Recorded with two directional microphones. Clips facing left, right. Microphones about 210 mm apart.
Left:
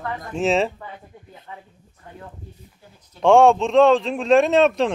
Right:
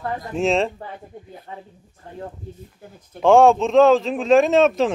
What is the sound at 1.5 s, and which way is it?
Speech, 35° right (ahead or behind).